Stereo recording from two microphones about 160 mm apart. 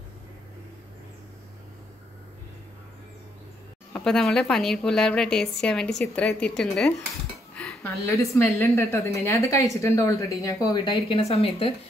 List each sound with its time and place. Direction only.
3.9 s a woman's voice: 5° left (ahead or behind)
7.5 s a sound: 10° left (ahead or behind)
8.2 s a woman's voice: 15° left (ahead or behind); by 11.7 s 40° left (ahead or behind)